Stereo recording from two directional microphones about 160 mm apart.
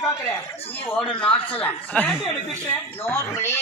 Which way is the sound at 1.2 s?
10° left (ahead or behind).